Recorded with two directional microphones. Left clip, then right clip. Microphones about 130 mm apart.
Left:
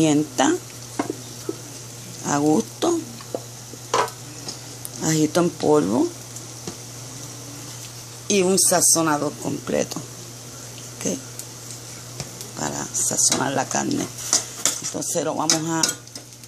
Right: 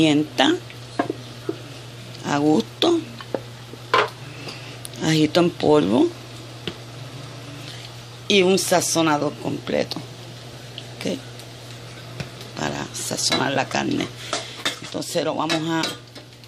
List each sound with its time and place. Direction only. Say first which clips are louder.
0.0 s a sound: right 1 dB; 10° left (ahead or behind)
2.2 s speech: right 1 dB; 10° left (ahead or behind)
5.0 s speech: right 2 dB; 5° left (ahead or behind)
8.3 s speech: right 2 dB; 5° left (ahead or behind)
9.4 s speech: even; 15° left (ahead or behind)
11.0 s speech: even; 15° left (ahead or behind)
12.5 s a sound: even; centre (ahead or behind)
14.9 s speech: right 1 dB; 5° left (ahead or behind)